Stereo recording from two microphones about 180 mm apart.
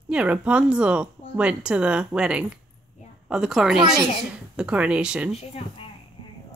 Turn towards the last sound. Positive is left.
turn(degrees=-5)  # may be behind; listen again after turning